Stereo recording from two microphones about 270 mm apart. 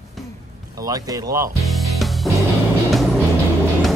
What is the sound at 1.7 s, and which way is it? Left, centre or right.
Music, centre.